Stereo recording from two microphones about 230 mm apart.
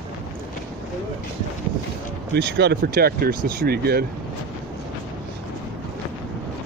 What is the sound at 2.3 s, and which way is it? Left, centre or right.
Speech, right.